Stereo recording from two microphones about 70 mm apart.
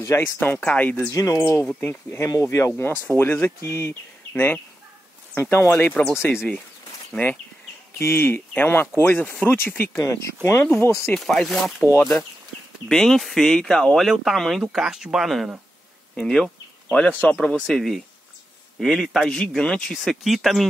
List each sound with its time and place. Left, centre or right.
0.0 s speech: left
0.4 s speech: left
1.1 s speech: left
1.9 s speech: left
7.1 s speech: left
8.0 s speech: left
10.0 s speech: left
11.1 s speech: centre
14.0 s speech: centre
14.6 s speech: centre
16.2 s speech: centre
16.9 s speech: left
17.4 s speech: centre